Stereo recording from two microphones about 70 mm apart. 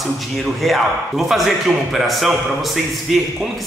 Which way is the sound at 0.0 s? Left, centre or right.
Centre.